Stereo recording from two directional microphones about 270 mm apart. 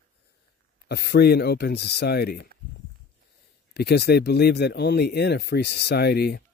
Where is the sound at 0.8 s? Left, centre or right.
Left.